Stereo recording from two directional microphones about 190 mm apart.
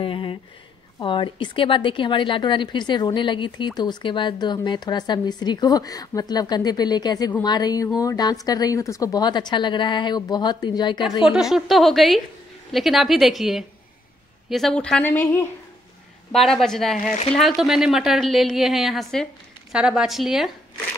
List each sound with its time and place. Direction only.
0.0 s a sound: 30° left (ahead or behind)
0.9 s a woman's voice: 25° left (ahead or behind)
11.2 s a woman's voice: 5° right (ahead or behind)
16.3 s a woman's voice: centre (ahead or behind)